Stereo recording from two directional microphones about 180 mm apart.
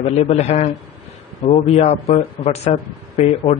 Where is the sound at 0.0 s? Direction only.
35° left (ahead or behind).